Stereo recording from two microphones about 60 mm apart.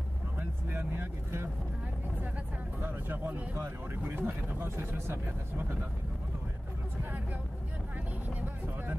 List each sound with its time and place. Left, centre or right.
0.4 s vehicle: right
2.8 s vehicle: right
3.5 s speech: right